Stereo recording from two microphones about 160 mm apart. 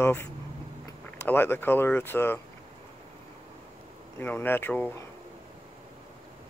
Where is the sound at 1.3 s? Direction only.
15° left (ahead or behind).